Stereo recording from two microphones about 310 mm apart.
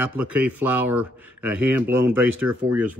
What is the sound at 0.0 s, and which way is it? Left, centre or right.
Speech, centre.